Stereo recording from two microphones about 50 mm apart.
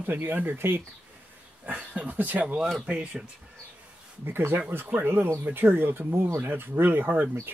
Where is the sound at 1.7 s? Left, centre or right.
Right.